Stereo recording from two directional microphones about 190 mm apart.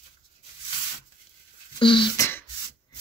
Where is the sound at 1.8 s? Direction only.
25° left (ahead or behind).